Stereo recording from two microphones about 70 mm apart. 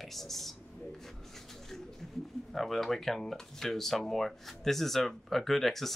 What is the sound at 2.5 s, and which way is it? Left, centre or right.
Speech, centre.